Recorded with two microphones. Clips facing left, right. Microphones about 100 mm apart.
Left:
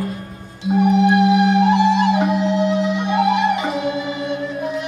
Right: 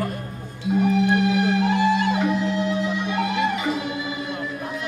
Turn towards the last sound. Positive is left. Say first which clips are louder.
# left 7 dB
turn(degrees=20)  # may be behind; listen again after turning